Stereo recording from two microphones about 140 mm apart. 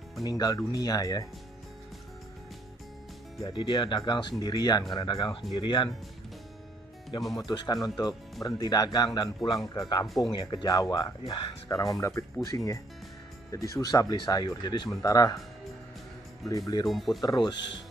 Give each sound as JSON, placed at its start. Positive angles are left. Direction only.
{"t": 0.2, "sound": "speech", "side_deg": 25}
{"t": 3.4, "sound": "speech", "side_deg": 35}
{"t": 7.3, "sound": "speech", "side_deg": 30}
{"t": 10.0, "sound": "speech", "side_deg": 0}
{"t": 10.3, "sound": "speech", "side_deg": 30}
{"t": 11.2, "sound": "speech", "side_deg": 40}
{"t": 11.7, "sound": "speech", "side_deg": 25}
{"t": 16.4, "sound": "speech", "side_deg": 25}
{"t": 16.8, "sound": "speech", "side_deg": 0}
{"t": 17.2, "sound": "speech", "side_deg": 30}